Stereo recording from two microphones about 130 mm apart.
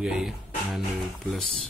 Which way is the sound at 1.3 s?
Centre (ahead or behind).